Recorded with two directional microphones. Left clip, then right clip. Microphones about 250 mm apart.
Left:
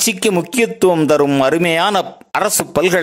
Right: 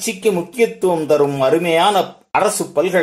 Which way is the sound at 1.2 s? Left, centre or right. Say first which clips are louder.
Left 1 dB; left.